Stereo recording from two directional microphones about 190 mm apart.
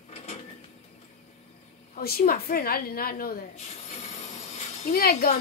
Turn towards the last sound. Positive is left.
turn(degrees=50)  # may be behind; listen again after turning